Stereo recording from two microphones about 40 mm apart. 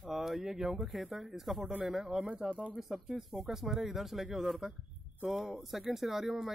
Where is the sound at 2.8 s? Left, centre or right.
Centre.